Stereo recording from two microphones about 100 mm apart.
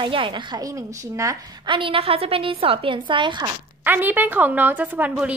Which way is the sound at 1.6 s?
60° right (ahead or behind).